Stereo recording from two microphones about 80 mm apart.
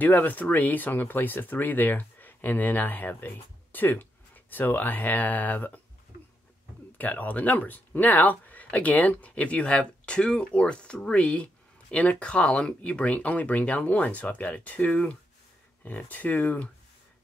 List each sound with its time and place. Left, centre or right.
0.0 s speech: left
7.0 s speech: left